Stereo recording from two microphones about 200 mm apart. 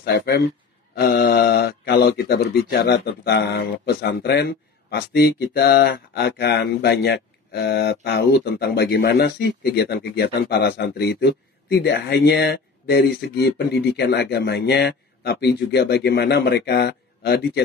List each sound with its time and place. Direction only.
0.0 s speech: 55° left (ahead or behind)